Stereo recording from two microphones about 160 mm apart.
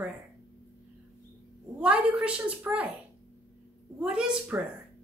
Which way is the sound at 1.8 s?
5° right (ahead or behind).